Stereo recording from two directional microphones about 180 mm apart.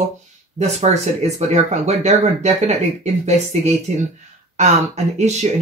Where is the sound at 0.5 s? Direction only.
40° right (ahead or behind).